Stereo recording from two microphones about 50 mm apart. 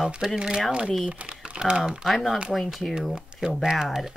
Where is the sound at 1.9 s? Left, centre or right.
Centre.